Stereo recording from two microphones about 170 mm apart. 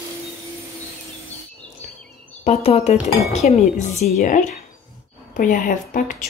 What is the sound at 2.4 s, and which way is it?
Speech, 40° left (ahead or behind).